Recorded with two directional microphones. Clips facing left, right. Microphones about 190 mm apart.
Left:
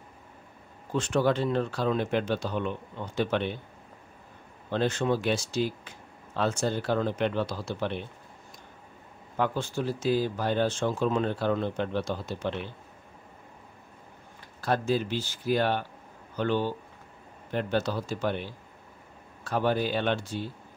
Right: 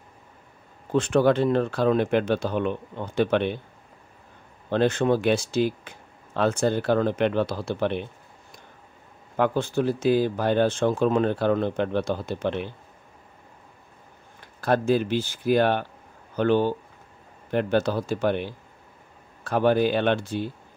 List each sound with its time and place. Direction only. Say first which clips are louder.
0.9 s speech: right 6 dB; 55° right (ahead or behind)
4.6 s speech: right 5 dB; 60° right (ahead or behind)
9.4 s speech: right 6 dB; 55° right (ahead or behind)
14.6 s speech: right 5 dB; 55° right (ahead or behind)